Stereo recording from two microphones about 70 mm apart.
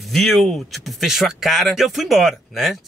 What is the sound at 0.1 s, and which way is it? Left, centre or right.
Speech, centre.